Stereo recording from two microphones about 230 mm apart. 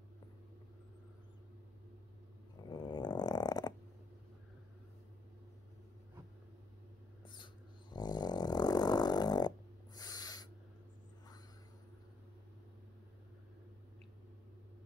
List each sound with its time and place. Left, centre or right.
2.7 s dog: centre
7.2 s a sound: centre
9.9 s owl: centre